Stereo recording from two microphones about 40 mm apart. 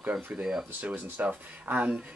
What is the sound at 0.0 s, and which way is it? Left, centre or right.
Speech, right.